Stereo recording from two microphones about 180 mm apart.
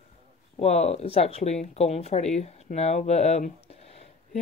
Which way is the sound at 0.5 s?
35° left (ahead or behind).